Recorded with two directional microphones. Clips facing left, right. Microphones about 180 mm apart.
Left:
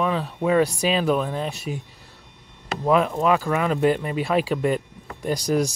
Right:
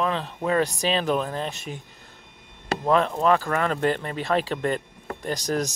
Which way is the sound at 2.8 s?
5° left (ahead or behind).